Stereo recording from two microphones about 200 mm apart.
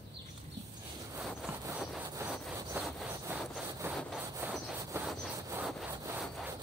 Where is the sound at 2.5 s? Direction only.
15° right (ahead or behind).